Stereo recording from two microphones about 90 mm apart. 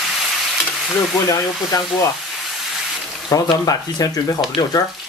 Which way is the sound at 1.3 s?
35° left (ahead or behind).